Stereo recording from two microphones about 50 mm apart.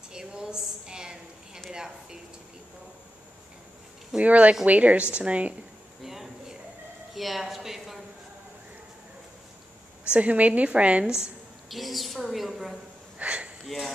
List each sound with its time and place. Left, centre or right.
0.1 s a sound: centre
4.2 s a woman's voice: right
6.0 s a sound: centre
7.2 s a woman's voice: centre
10.1 s a woman's voice: right
11.1 s a woman's voice: centre
11.7 s a woman's voice: centre
13.2 s speech: right
13.7 s a woman's voice: centre